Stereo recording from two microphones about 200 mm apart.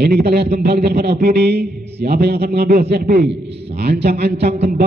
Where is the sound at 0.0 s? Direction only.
55° right (ahead or behind).